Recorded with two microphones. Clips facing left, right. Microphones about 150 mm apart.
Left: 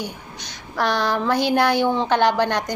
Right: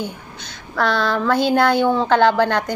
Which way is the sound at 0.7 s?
15° left (ahead or behind).